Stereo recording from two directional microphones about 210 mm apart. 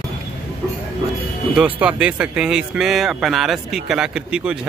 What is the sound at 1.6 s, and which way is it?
Speech, 5° right (ahead or behind).